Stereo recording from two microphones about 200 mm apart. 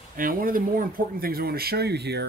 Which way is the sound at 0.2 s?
45° right (ahead or behind).